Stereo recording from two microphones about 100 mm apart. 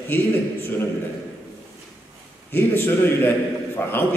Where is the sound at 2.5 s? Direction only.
20° left (ahead or behind).